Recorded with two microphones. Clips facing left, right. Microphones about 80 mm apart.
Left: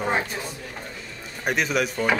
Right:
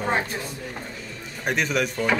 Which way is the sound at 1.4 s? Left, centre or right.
Centre.